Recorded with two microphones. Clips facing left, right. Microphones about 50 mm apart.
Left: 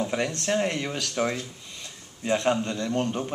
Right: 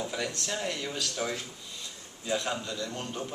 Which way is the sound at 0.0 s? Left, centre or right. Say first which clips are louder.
Left 6 dB; left.